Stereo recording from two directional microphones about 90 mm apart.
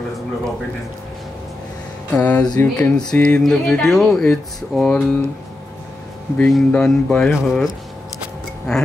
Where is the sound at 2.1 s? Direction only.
15° left (ahead or behind).